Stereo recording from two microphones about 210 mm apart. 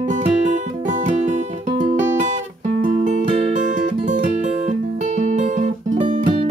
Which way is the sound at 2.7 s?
40° right (ahead or behind).